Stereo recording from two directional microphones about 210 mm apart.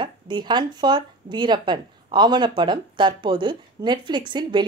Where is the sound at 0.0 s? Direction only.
20° right (ahead or behind).